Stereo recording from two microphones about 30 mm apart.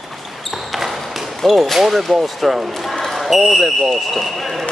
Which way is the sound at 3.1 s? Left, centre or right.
Centre.